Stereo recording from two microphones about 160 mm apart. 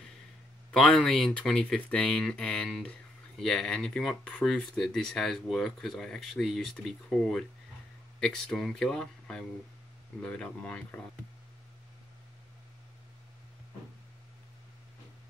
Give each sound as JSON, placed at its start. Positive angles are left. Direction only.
{"t": 0.7, "sound": "speech", "side_deg": 5}